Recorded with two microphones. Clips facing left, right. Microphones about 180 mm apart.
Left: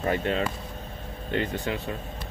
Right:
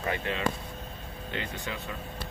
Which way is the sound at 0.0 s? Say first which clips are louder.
Left 6 dB; 40° left (ahead or behind).